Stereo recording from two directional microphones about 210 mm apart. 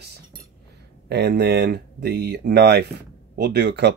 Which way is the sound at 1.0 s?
50° right (ahead or behind).